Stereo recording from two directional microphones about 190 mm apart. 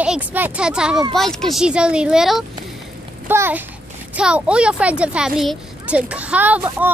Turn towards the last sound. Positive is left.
turn(degrees=-10)  # may be behind; listen again after turning